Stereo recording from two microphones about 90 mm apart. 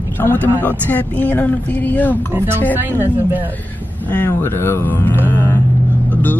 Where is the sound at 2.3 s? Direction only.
25° right (ahead or behind).